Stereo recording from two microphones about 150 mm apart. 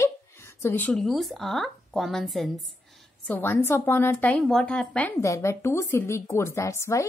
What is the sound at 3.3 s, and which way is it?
Speech, 15° left (ahead or behind).